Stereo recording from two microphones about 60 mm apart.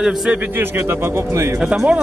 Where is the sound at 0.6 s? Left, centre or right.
Right.